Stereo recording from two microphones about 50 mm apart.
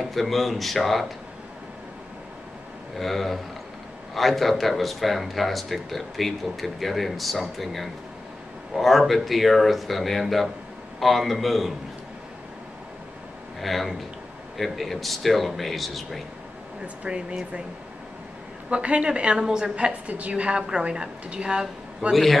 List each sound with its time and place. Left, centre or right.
0.0 s speech: centre
3.0 s speech: centre
13.6 s speech: centre
16.8 s a woman's voice: right
18.7 s a woman's voice: right
22.1 s speech: centre